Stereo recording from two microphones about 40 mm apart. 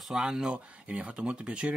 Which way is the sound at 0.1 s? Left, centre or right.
Centre.